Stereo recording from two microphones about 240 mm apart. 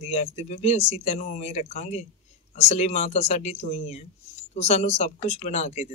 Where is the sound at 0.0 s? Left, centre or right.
Left.